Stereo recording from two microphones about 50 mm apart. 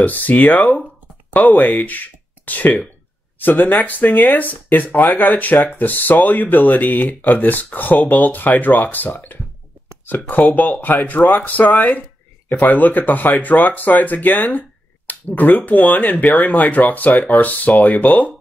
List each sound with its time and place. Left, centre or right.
0.0 s speech: left